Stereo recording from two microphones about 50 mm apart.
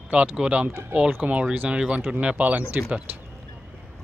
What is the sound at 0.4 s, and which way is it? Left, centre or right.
Speech, right.